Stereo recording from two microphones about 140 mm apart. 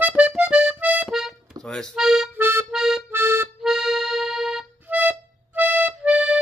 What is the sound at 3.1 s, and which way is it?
Music, 15° right (ahead or behind).